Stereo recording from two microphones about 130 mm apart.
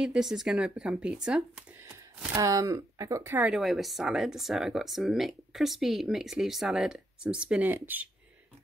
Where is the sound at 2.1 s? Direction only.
25° right (ahead or behind).